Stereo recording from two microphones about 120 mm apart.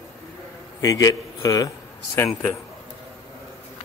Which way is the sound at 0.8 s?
30° left (ahead or behind).